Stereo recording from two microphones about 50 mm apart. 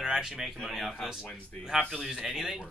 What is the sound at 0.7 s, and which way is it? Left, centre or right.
Speech, centre.